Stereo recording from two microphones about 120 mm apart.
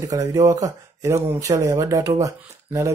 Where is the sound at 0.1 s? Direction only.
30° right (ahead or behind).